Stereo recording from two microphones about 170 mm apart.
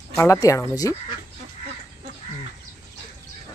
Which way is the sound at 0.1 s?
15° left (ahead or behind).